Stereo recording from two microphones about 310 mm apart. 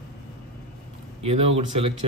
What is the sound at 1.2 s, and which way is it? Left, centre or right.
Speech, centre.